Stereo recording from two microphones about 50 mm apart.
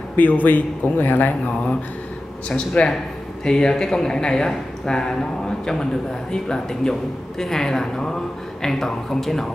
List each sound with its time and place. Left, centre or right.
0.1 s speech: left
2.5 s speech: left
6.3 s speech: centre